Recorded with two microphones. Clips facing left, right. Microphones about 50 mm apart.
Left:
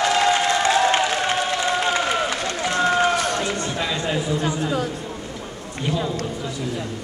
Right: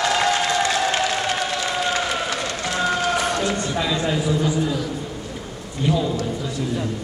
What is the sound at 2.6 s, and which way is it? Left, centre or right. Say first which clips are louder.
Run: left 3 dB; centre.